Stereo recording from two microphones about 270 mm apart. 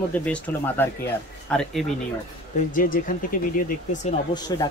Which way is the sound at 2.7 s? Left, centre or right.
Left.